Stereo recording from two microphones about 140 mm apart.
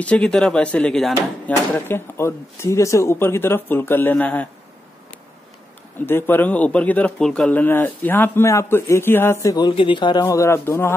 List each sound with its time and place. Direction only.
0.0 s a man's voice: 10° left (ahead or behind)
1.7 s a man's voice: 15° left (ahead or behind)
5.9 s a man's voice: 15° left (ahead or behind); by 10.2 s 35° left (ahead or behind)
10.2 s speech: 20° left (ahead or behind)